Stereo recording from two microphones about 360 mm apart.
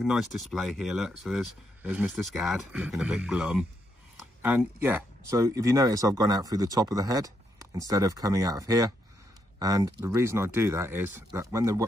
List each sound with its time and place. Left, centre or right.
0.0 s speech: centre